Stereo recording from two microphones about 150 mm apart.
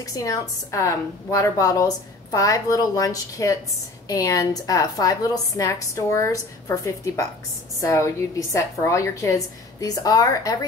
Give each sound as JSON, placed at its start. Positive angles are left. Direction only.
{"t": 0.0, "sound": "a woman's voice", "side_deg": 25}